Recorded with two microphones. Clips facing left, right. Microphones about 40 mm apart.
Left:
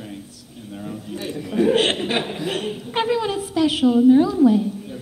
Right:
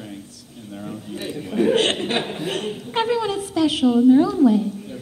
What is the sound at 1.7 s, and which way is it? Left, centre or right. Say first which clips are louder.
Speech: even; centre.